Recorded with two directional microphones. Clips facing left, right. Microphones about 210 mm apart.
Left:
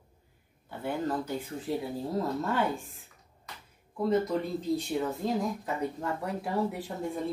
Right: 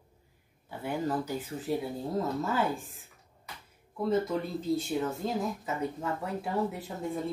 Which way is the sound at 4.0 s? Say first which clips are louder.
Left 1 dB; centre (ahead or behind).